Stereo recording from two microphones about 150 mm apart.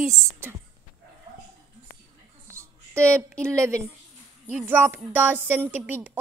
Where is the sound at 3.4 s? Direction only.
20° right (ahead or behind).